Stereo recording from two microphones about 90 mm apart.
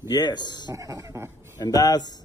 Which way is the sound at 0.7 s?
35° right (ahead or behind).